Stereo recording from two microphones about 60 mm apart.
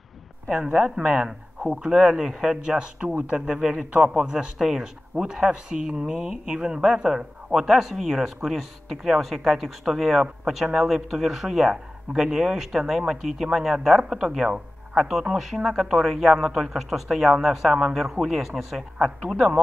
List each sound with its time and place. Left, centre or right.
0.5 s speech: centre
2.6 s speech: centre